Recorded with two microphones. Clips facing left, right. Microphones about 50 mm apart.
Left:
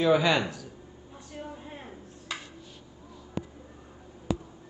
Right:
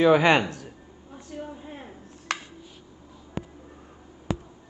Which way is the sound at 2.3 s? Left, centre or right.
Right.